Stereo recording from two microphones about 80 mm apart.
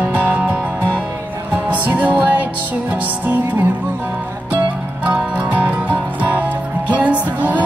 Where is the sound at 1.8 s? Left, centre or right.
Centre.